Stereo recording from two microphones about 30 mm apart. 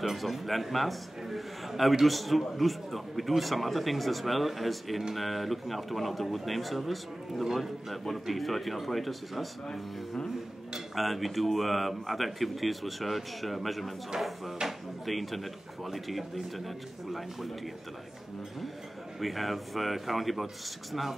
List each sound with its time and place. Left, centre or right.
0.0 s a man's voice: centre
9.7 s speech: left
11.0 s a man's voice: centre
14.6 s drawer open or close: centre
15.0 s a man's voice: centre
19.1 s a man's voice: centre